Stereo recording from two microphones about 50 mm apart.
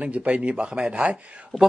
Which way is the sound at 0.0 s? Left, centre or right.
Right.